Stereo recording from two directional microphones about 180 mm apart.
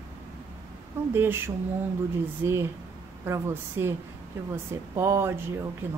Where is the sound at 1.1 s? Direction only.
10° right (ahead or behind).